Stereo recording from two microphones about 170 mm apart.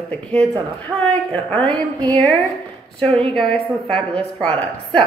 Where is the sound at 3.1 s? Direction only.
35° right (ahead or behind).